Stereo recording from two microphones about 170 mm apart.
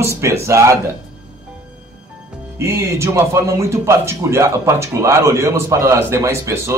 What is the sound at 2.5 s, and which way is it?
Speech, 15° right (ahead or behind).